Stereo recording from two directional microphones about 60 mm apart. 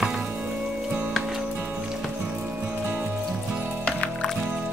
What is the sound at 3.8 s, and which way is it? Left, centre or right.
Music, centre.